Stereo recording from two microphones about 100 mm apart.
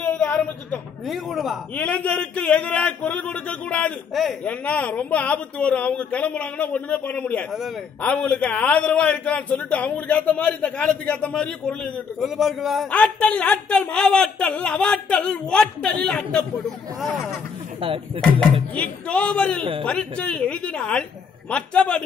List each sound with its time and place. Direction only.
1.0 s speech: centre (ahead or behind)
1.8 s a man's voice: 15° left (ahead or behind)
4.1 s speech: centre (ahead or behind)
4.5 s a man's voice: 15° left (ahead or behind)
12.9 s a man's voice: 10° left (ahead or behind)
17.7 s speech: 65° right (ahead or behind)
18.8 s a man's voice: 15° left (ahead or behind)
19.6 s speech: 65° right (ahead or behind)
19.9 s a man's voice: 10° left (ahead or behind)